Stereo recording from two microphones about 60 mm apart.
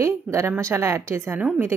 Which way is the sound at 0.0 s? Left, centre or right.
Right.